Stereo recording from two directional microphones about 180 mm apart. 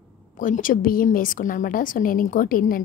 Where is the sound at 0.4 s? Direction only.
50° left (ahead or behind).